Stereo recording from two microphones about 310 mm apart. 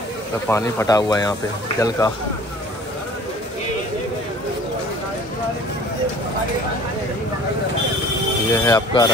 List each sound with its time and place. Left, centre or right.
0.5 s speech: centre
8.5 s speech: centre